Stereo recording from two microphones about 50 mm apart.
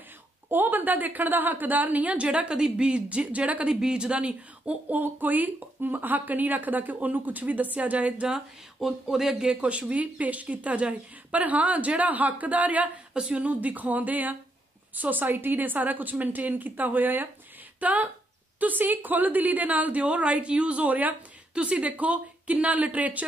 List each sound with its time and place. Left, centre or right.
0.5 s a woman's voice: right
4.8 s speech: right
8.7 s speech: centre
9.7 s a woman's voice: right